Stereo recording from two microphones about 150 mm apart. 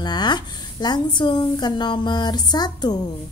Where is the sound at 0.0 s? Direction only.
30° left (ahead or behind).